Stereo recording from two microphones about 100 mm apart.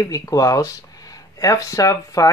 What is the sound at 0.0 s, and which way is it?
Speech, 35° left (ahead or behind).